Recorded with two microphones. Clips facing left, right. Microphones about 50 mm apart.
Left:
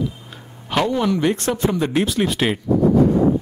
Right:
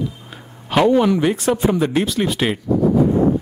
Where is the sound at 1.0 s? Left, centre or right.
Centre.